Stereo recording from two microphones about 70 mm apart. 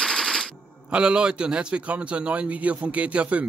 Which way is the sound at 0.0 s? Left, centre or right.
Centre.